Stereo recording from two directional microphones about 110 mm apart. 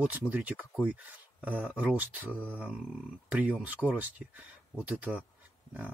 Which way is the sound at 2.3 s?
15° left (ahead or behind).